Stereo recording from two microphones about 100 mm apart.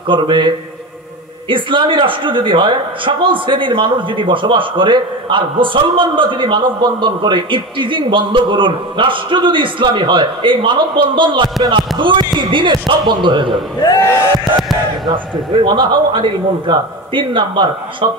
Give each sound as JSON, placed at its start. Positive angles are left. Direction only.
{"t": 0.1, "sound": "a man's voice", "side_deg": -55}
{"t": 15.0, "sound": "a man's voice", "side_deg": -50}